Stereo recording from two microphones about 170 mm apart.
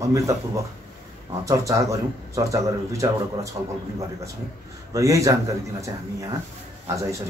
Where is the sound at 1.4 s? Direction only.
20° right (ahead or behind).